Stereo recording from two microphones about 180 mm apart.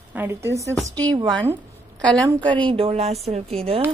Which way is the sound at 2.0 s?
5° left (ahead or behind).